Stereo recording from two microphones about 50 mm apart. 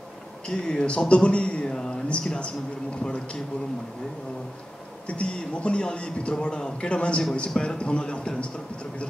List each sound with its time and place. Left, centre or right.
0.5 s a man's voice: centre
5.0 s a man's voice: left